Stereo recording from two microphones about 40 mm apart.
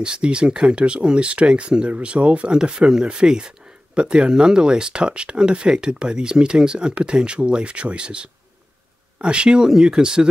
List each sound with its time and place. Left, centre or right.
0.0 s speech: right
1.9 s speech: right